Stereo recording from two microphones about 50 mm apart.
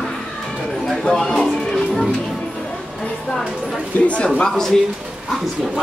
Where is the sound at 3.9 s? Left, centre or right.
Left.